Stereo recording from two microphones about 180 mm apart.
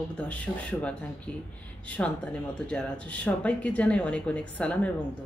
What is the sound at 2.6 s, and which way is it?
Speech, 5° left (ahead or behind).